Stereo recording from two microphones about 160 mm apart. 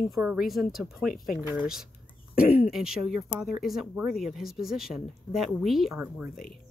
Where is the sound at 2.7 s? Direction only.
5° right (ahead or behind).